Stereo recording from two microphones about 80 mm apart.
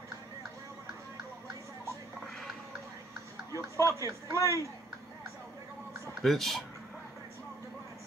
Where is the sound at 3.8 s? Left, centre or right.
Left.